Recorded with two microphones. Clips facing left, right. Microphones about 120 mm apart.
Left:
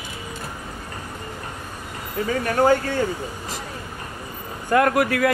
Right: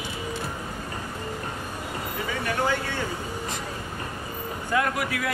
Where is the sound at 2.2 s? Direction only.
45° left (ahead or behind).